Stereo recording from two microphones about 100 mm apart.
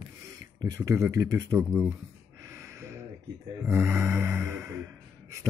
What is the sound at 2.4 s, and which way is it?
Gasp, 30° right (ahead or behind).